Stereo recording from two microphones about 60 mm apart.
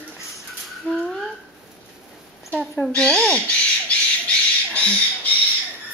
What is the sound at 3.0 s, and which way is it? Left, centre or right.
Speech, centre.